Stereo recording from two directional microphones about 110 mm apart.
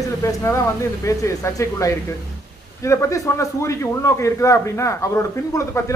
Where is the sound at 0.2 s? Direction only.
25° left (ahead or behind).